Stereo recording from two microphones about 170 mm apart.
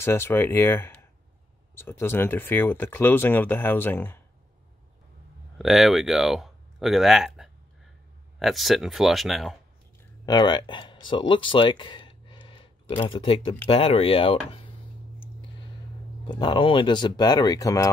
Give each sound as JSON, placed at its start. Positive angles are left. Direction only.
{"t": 0.0, "sound": "speech", "side_deg": 15}
{"t": 5.6, "sound": "speech", "side_deg": 0}
{"t": 10.2, "sound": "speech", "side_deg": 25}
{"t": 16.3, "sound": "speech", "side_deg": 25}